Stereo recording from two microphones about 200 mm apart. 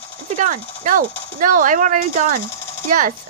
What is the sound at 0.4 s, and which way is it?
Speech, 40° right (ahead or behind).